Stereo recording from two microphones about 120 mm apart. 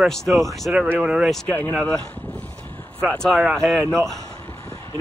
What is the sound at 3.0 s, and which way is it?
Speech, 10° left (ahead or behind).